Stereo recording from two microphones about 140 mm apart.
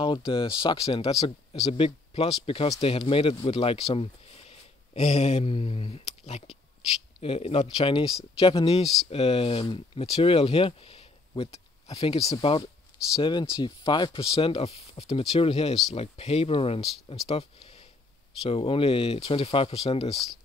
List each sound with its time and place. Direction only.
0.0 s speech: 35° left (ahead or behind)
12.2 s speech: 25° left (ahead or behind); by 20.1 s 45° left (ahead or behind)